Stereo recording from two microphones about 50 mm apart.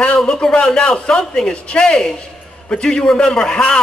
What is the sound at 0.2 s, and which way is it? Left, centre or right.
A man's voice, centre.